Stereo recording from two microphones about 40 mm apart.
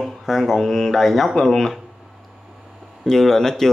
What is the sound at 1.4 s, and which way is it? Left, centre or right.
Speech, centre.